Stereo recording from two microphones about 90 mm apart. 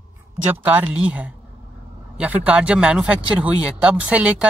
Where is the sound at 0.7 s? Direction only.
15° right (ahead or behind).